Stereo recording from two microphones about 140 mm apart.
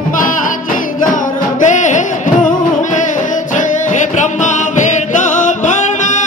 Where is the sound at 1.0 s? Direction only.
65° left (ahead or behind).